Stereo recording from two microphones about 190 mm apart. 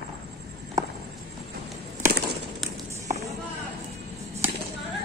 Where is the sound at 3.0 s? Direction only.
15° right (ahead or behind).